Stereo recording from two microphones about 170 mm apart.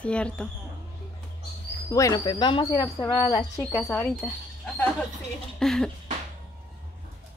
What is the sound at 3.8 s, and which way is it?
Speech, 5° left (ahead or behind).